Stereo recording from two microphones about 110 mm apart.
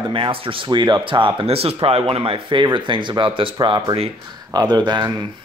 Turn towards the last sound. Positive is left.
turn(degrees=-40)  # may be behind; listen again after turning